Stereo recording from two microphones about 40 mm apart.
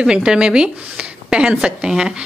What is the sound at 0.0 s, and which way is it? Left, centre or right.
A woman's voice, centre.